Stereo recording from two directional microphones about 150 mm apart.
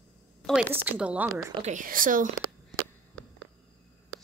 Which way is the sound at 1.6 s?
65° right (ahead or behind).